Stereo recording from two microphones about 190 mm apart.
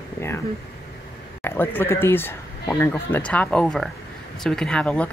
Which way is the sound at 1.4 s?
10° left (ahead or behind).